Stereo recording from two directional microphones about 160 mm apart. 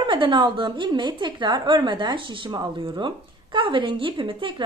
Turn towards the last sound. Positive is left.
turn(degrees=-30)  # may be behind; listen again after turning